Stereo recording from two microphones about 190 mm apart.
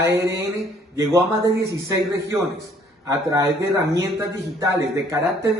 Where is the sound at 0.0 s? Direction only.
15° right (ahead or behind).